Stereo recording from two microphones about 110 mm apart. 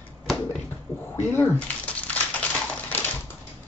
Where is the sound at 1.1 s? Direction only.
20° left (ahead or behind).